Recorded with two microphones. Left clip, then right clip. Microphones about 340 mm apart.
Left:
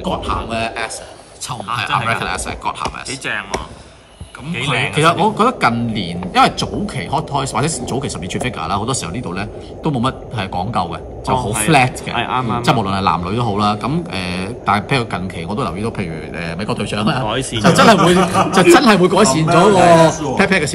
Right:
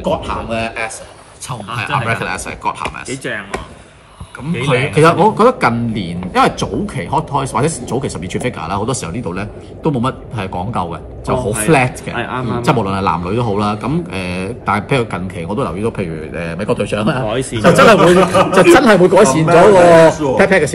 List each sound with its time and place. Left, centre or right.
0.0 s a man's voice: centre
2.0 s a man's voice: centre
4.9 s a man's voice: centre
12.2 s speech: centre
12.6 s a man's voice: centre
17.3 s speech: centre
17.6 s a man's voice: centre